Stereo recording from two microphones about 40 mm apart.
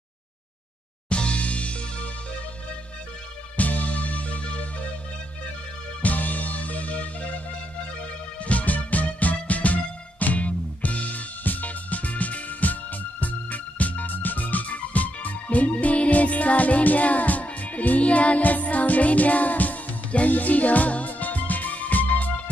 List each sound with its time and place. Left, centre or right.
1.0 s music: left
3.5 s music: left
6.0 s music: left
8.5 s music: left